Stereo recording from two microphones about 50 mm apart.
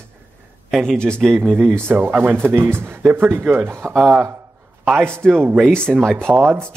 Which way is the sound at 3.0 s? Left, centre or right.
Right.